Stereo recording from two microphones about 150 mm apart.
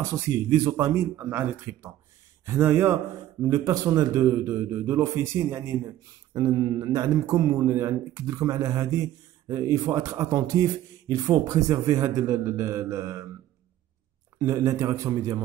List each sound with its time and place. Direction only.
0.1 s a man's voice: 20° right (ahead or behind)
14.4 s a man's voice: 25° right (ahead or behind)